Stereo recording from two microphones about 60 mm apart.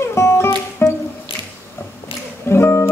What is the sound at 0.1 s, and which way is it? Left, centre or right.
Music, left.